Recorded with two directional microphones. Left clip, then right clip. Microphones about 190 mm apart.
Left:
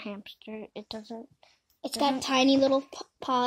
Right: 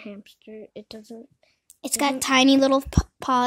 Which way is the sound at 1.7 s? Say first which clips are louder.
Right 3 dB; 55° right (ahead or behind).